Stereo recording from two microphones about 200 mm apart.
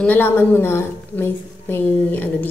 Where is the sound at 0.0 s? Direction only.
10° left (ahead or behind).